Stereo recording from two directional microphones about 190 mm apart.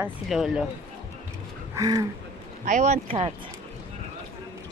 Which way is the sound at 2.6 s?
40° right (ahead or behind).